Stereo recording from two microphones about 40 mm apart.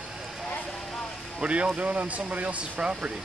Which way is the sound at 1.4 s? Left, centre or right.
Right.